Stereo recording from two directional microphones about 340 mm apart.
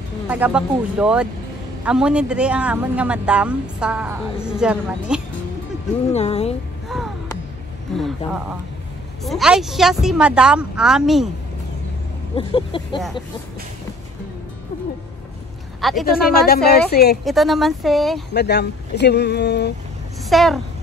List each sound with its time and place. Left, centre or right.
0.3 s speech: centre
6.1 s a sound: centre
8.3 s speech: centre
12.4 s a sound: centre
15.8 s speech: centre
16.1 s speech: left
17.2 s speech: centre
18.3 s speech: left
20.2 s speech: centre